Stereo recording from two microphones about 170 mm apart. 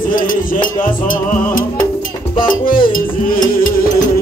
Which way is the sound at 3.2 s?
55° left (ahead or behind).